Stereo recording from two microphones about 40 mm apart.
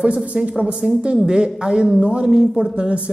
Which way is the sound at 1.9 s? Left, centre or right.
Right.